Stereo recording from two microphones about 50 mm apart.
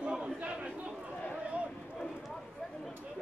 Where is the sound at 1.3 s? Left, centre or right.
Right.